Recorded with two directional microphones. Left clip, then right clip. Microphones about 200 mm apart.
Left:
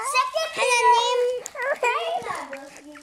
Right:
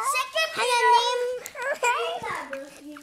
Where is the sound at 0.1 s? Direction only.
35° right (ahead or behind).